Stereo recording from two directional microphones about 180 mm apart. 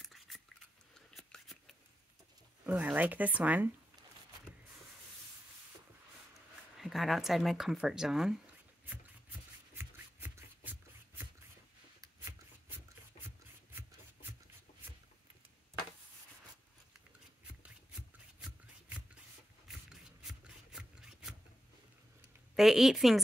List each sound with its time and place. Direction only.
0.0 s a sound: centre (ahead or behind)
2.6 s speech: 10° right (ahead or behind)
6.8 s speech: centre (ahead or behind)
9.8 s a sound: 10° right (ahead or behind)
13.2 s rub: 35° left (ahead or behind)
19.9 s rub: 5° right (ahead or behind)
22.6 s a woman's voice: centre (ahead or behind)